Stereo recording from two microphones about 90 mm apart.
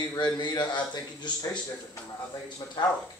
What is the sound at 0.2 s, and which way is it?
Speech, 55° left (ahead or behind).